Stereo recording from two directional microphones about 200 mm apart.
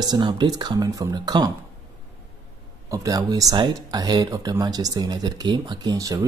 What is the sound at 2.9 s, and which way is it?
Speech, 20° right (ahead or behind).